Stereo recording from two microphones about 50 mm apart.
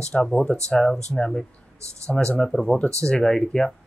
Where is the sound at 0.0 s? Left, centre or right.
Centre.